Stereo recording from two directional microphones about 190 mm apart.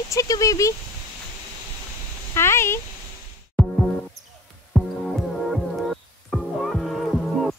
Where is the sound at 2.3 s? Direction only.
15° left (ahead or behind).